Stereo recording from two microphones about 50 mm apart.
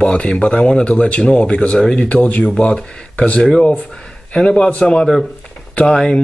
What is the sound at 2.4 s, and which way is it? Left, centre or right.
Speech, centre.